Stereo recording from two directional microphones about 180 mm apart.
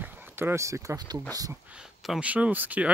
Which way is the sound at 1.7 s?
5° right (ahead or behind).